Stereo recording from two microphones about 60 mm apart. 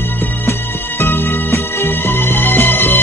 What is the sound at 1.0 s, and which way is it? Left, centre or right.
Music, left.